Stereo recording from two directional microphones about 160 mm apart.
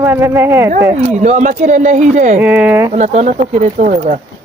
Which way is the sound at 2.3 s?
10° right (ahead or behind).